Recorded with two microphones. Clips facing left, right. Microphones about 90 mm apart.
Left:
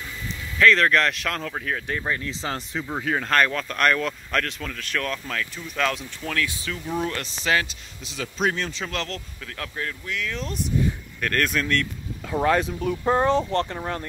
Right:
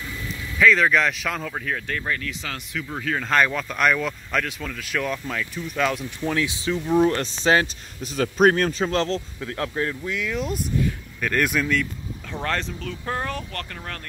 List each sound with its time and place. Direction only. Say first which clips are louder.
0.6 s speech: even; 5° right (ahead or behind)
1.9 s speech: even; 20° left (ahead or behind)
2.9 s speech: left 1 dB; 15° left (ahead or behind)
3.3 s speech: right 2 dB; 5° right (ahead or behind)
6.2 s speech: right 4 dB; 20° right (ahead or behind)
8.2 s a man's voice: right 8 dB; 50° right (ahead or behind)
8.8 s speech: right 7 dB; 30° right (ahead or behind); by 11.9 s 5° right (ahead or behind)
12.3 s speech: left 6 dB; 10° left (ahead or behind)